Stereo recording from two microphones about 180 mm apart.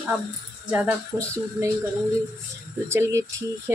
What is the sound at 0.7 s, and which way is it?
Speech, 15° right (ahead or behind).